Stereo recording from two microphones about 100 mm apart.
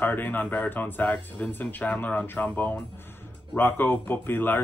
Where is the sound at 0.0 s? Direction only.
20° left (ahead or behind).